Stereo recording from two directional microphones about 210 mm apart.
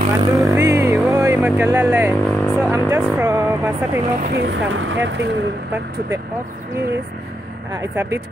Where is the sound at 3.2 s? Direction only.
15° right (ahead or behind).